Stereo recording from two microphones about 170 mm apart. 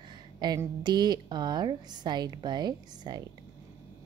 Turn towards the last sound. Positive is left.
turn(degrees=-25)  # may be behind; listen again after turning